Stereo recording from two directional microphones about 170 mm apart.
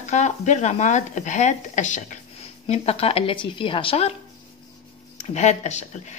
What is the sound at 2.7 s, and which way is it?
Speech, 35° left (ahead or behind).